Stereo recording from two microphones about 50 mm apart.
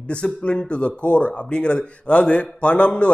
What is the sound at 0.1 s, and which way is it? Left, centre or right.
A man's voice, left.